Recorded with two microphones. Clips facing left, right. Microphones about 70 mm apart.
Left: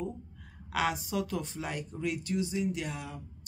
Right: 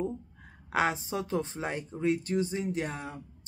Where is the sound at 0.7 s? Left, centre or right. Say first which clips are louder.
Right 3 dB; right.